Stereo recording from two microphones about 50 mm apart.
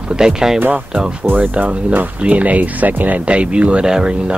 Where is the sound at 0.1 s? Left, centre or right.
Centre.